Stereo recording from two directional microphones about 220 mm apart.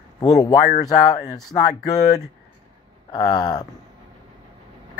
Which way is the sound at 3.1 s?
20° left (ahead or behind).